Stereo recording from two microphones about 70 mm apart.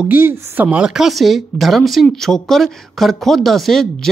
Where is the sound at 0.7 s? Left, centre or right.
Centre.